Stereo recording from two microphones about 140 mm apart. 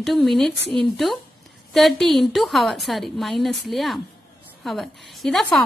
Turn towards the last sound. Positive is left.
turn(degrees=5)  # may be behind; listen again after turning